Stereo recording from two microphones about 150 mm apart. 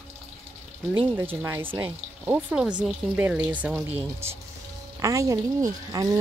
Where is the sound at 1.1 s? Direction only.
15° right (ahead or behind).